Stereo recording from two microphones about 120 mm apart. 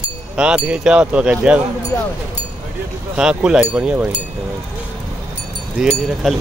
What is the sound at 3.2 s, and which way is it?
Speech, 5° right (ahead or behind).